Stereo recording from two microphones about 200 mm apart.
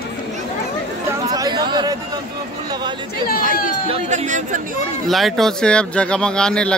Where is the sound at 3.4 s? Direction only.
35° right (ahead or behind).